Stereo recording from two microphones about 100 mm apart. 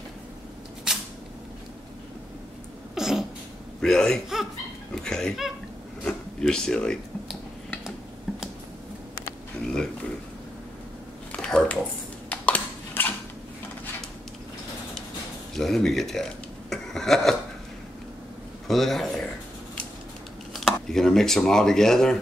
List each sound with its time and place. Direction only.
0.9 s single-lens reflex camera: 5° right (ahead or behind)
2.9 s cat: 5° right (ahead or behind)
3.8 s speech: 5° left (ahead or behind)
6.0 s a sound: 5° left (ahead or behind)
11.3 s a sound: 10° left (ahead or behind)
12.3 s crushing: 15° left (ahead or behind)
15.5 s speech: 5° left (ahead or behind)
18.7 s speech: centre (ahead or behind)
20.5 s speech: centre (ahead or behind)